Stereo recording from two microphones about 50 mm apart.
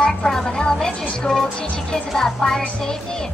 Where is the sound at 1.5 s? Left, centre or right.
Left.